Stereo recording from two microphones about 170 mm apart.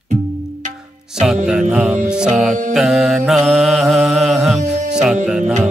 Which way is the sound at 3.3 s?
Centre (ahead or behind).